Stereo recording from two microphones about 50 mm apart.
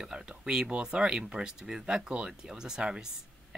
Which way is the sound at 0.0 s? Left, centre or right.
Centre.